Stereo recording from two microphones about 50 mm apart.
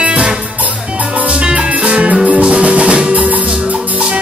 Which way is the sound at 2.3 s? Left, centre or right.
Right.